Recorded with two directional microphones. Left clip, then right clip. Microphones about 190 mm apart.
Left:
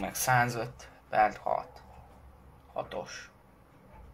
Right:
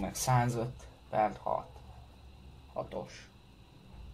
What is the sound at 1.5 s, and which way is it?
Speech, 30° left (ahead or behind).